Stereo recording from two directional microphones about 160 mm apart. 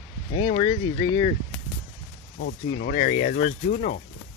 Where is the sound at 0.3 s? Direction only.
35° left (ahead or behind).